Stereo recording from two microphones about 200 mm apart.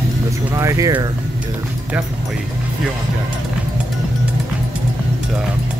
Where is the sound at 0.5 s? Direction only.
15° right (ahead or behind).